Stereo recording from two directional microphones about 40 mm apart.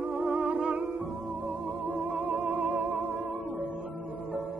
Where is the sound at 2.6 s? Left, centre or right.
Right.